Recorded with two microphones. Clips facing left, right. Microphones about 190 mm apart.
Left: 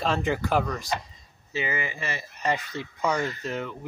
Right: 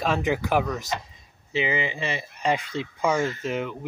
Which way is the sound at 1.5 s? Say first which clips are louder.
Right 4 dB; 15° right (ahead or behind).